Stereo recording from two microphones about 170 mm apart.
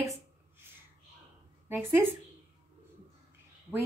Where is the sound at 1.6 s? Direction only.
10° right (ahead or behind).